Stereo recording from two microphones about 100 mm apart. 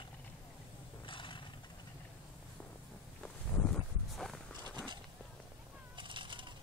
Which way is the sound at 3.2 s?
10° left (ahead or behind).